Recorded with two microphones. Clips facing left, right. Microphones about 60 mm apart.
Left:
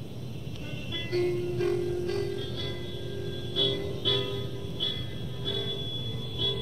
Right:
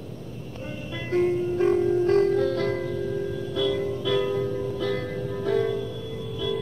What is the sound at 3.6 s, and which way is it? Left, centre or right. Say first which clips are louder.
Music: right 6 dB; right.